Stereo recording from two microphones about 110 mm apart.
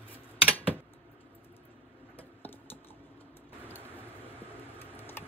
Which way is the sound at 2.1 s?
15° left (ahead or behind).